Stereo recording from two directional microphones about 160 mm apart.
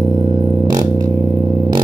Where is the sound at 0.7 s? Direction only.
25° right (ahead or behind).